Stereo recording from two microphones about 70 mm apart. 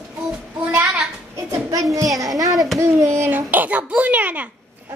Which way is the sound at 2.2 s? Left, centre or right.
Right.